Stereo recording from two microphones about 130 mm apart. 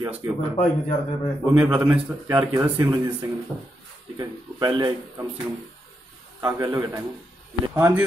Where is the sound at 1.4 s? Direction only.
10° right (ahead or behind).